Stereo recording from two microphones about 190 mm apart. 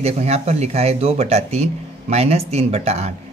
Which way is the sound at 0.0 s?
35° right (ahead or behind).